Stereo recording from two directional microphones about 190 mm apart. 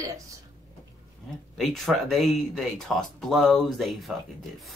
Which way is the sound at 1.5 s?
Centre (ahead or behind).